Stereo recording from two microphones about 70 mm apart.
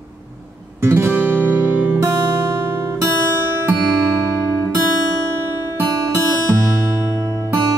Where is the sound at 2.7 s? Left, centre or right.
Right.